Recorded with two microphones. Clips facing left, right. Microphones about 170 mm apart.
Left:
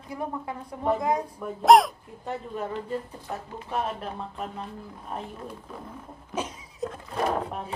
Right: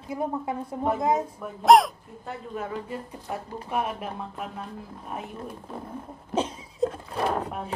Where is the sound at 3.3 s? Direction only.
10° right (ahead or behind).